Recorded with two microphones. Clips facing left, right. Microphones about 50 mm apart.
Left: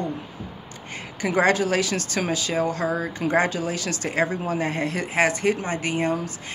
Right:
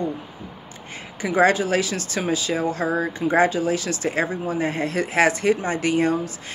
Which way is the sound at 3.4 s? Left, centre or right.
Left.